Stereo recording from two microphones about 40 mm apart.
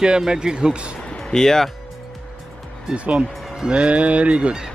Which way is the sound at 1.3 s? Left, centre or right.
Centre.